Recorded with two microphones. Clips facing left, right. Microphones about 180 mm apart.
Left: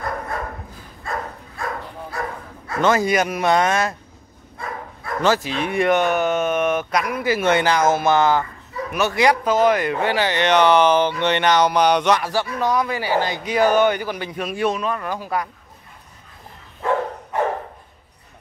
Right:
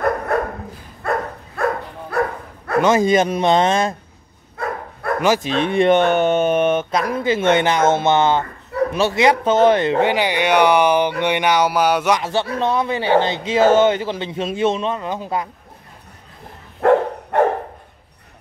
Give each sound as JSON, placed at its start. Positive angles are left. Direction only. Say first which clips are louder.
{"t": 0.3, "sound": "dog", "louder": "right 8 dB", "side_deg": -70}
{"t": 2.8, "sound": "speech", "louder": "right 3 dB", "side_deg": -20}
{"t": 5.2, "sound": "speech", "louder": "right 1 dB", "side_deg": -15}
{"t": 12.2, "sound": "speech", "louder": "right 2 dB", "side_deg": -25}
{"t": 16.8, "sound": "dog", "louder": "right 8 dB", "side_deg": -60}